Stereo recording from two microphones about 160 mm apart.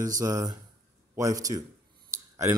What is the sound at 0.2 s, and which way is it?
A man's voice, 20° right (ahead or behind).